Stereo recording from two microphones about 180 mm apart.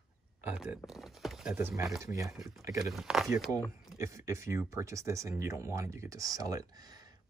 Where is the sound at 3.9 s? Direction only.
15° right (ahead or behind).